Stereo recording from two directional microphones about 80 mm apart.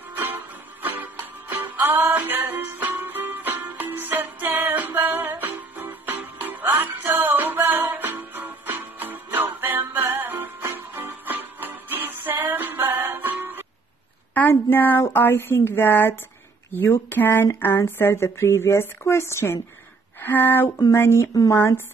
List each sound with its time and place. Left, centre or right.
0.1 s music: right
1.5 s music: right
2.0 s music: right
6.7 s music: right
14.3 s speech: left